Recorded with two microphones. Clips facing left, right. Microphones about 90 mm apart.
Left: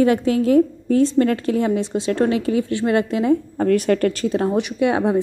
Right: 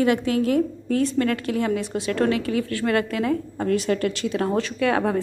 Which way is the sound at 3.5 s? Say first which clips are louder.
Left 5 dB; 50° left (ahead or behind).